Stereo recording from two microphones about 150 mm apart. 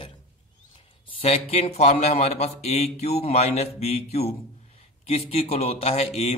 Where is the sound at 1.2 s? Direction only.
45° left (ahead or behind).